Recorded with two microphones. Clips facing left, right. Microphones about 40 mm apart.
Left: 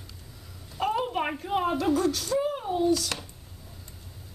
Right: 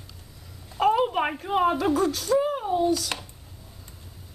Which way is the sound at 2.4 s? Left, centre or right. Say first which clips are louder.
Right 2 dB; centre.